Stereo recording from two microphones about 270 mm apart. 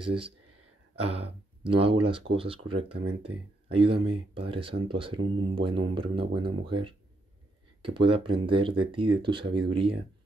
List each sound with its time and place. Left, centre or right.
0.0 s speech: centre